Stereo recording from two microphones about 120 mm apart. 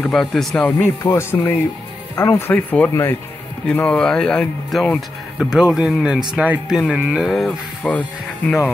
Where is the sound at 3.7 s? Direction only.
10° left (ahead or behind); by 7.3 s 10° right (ahead or behind).